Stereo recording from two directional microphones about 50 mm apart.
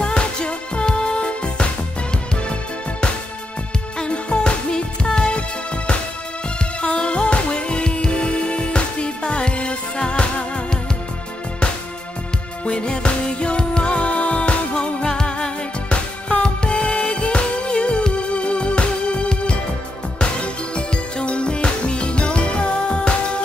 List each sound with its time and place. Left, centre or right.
0.0 s music: centre
4.0 s music: centre
6.8 s music: left
12.6 s music: centre